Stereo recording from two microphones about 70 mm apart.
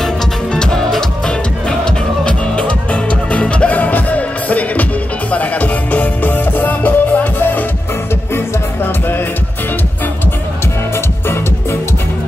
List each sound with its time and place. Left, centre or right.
0.0 s music: centre; by 7.6 s left